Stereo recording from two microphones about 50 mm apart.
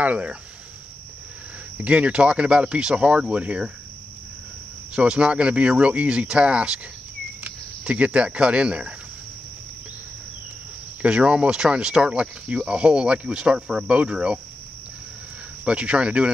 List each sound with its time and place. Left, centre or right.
0.0 s speech: right
1.8 s speech: right
4.9 s speech: centre
11.0 s speech: right
15.6 s speech: right